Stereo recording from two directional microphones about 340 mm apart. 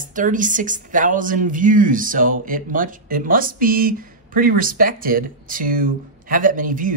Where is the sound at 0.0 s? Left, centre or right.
Right.